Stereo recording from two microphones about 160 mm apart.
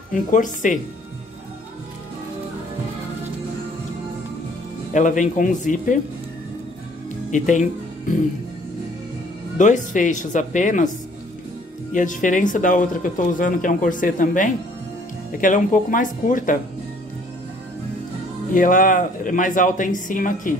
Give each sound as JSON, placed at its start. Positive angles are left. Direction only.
{"t": 0.1, "sound": "speech", "side_deg": 55}
{"t": 4.9, "sound": "speech", "side_deg": 50}
{"t": 7.2, "sound": "speech", "side_deg": 50}
{"t": 9.6, "sound": "speech", "side_deg": 50}
{"t": 11.9, "sound": "speech", "side_deg": 55}
{"t": 18.5, "sound": "speech", "side_deg": 55}